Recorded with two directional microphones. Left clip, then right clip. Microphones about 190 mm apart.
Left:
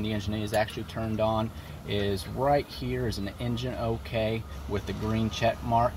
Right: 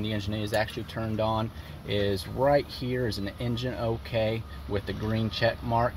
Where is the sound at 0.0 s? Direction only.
50° right (ahead or behind).